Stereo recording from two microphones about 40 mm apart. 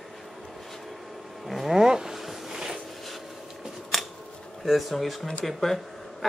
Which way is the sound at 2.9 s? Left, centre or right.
Centre.